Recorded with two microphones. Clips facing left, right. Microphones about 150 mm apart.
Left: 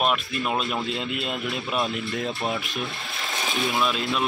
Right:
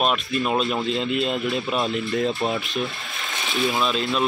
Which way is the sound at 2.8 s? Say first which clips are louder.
Right 4 dB; centre (ahead or behind).